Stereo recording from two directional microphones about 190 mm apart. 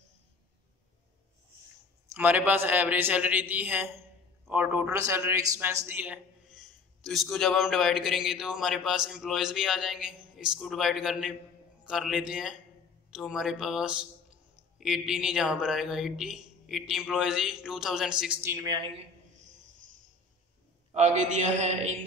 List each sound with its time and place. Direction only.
2.1 s a man's voice: 10° right (ahead or behind)
6.6 s a man's voice: centre (ahead or behind); by 18.9 s 20° right (ahead or behind)
20.9 s a man's voice: 35° right (ahead or behind)